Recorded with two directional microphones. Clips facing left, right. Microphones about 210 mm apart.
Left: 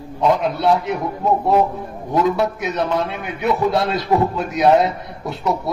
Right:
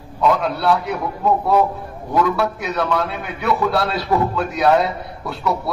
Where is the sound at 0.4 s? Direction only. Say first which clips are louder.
Left 1 dB; 20° left (ahead or behind).